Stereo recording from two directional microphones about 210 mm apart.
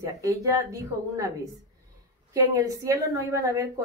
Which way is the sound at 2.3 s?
15° right (ahead or behind).